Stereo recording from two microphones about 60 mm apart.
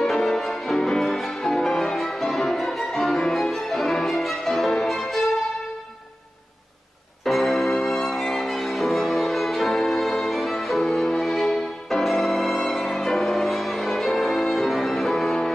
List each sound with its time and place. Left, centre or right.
0.0 s music: centre
7.2 s music: centre